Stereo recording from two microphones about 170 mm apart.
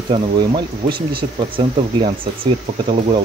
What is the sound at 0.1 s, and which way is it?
Speech, 25° right (ahead or behind).